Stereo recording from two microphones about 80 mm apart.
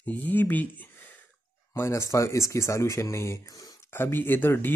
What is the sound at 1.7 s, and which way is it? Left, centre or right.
Speech, left.